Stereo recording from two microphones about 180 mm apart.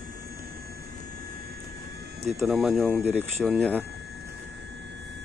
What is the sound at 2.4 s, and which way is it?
Speech, centre (ahead or behind).